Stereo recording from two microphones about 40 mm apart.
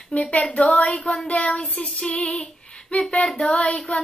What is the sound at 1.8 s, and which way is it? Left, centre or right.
Female singing, left.